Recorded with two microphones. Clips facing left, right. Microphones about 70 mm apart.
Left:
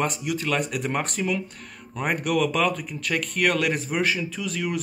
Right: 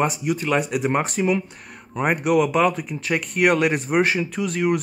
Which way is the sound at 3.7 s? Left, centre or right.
Right.